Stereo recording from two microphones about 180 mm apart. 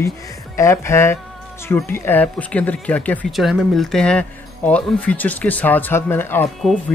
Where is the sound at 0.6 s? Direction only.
15° left (ahead or behind).